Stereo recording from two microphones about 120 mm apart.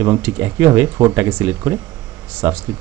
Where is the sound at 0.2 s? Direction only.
20° right (ahead or behind).